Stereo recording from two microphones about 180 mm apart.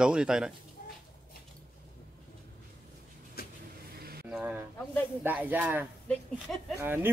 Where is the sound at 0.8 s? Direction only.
50° left (ahead or behind).